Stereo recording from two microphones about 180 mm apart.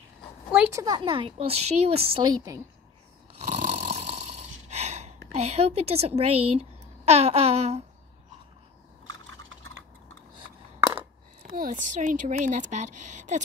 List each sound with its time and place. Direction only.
0.7 s a woman's voice: 25° right (ahead or behind)
3.3 s snoring: 35° right (ahead or behind)
5.3 s a woman's voice: 35° right (ahead or behind)
10.4 s a sound: 90° right
11.4 s speech: 50° right (ahead or behind)